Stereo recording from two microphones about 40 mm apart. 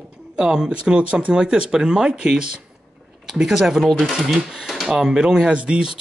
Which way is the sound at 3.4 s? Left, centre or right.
Centre.